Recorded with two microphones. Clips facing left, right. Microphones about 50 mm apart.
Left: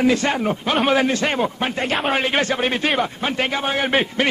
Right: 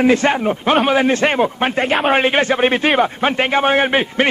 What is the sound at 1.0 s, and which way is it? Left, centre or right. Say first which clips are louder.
A man's voice: right 5 dB; right.